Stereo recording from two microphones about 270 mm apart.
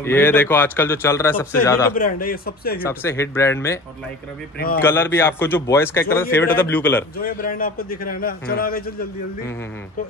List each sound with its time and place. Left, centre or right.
0.0 s a man's voice: centre
2.0 s a man's voice: left
2.8 s a man's voice: centre
4.6 s a man's voice: left
4.8 s a man's voice: centre
7.2 s a man's voice: left